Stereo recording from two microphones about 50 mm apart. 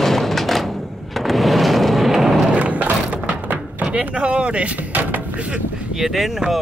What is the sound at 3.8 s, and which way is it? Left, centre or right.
Speech, right.